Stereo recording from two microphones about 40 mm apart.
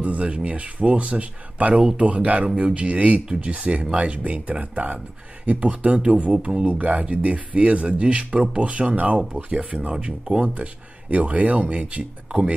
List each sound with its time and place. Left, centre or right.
0.0 s speech: right
1.8 s speech: centre
2.0 s speech: right
2.5 s speech: right
11.1 s speech: right